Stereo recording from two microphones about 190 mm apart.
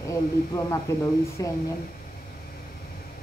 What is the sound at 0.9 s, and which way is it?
Speech, 15° left (ahead or behind).